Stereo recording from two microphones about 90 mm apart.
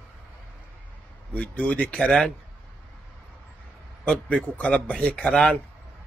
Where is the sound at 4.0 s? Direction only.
15° left (ahead or behind).